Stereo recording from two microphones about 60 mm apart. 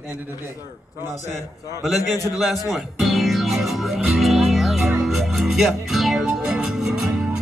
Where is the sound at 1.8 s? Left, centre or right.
Centre.